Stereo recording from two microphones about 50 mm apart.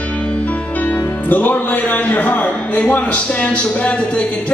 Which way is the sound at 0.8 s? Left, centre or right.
Left.